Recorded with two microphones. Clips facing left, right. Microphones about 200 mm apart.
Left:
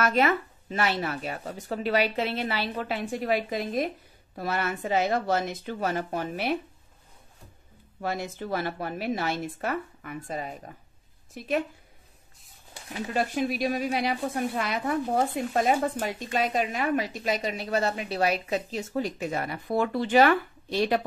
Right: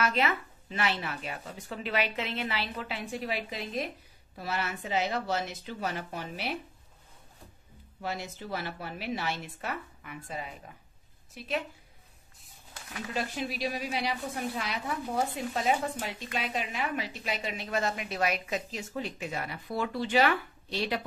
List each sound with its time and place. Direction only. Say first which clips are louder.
0.0 s a woman's voice: left 5 dB; 45° left (ahead or behind)
8.0 s a woman's voice: left 5 dB; 50° left (ahead or behind)
13.1 s a woman's voice: left 7 dB; 50° left (ahead or behind)